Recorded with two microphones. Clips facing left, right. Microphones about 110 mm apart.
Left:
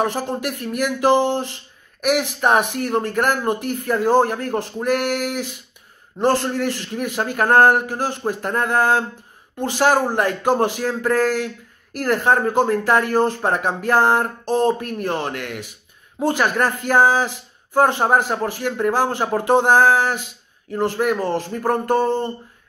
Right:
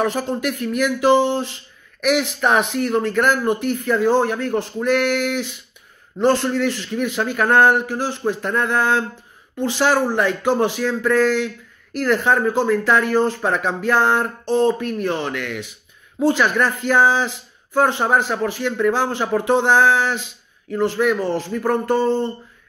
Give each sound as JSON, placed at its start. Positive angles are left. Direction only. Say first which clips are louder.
{"t": 0.0, "sound": "speech", "louder": "right 1 dB", "side_deg": 40}